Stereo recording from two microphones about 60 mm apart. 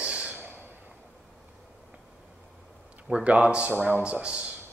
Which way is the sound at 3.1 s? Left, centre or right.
Right.